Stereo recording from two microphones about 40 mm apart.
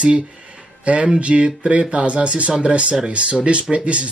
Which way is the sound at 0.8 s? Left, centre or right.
Right.